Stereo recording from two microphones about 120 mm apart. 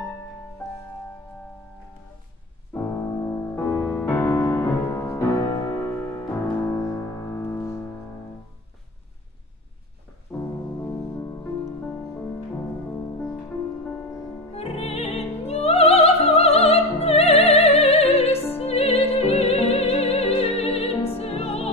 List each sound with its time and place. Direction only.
2.7 s music: 20° left (ahead or behind)
10.3 s music: 5° left (ahead or behind)
14.5 s music: 55° left (ahead or behind)